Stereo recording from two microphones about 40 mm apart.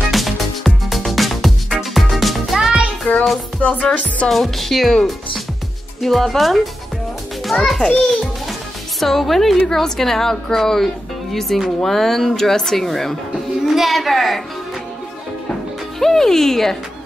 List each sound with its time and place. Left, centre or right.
0.1 s music: centre
3.1 s music: left
4.3 s a woman's voice: centre
5.9 s a woman's voice: centre
8.0 s music: centre
9.0 s a woman's voice: centre
16.0 s speech: centre